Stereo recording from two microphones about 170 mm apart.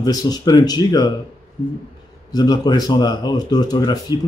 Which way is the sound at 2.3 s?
25° left (ahead or behind).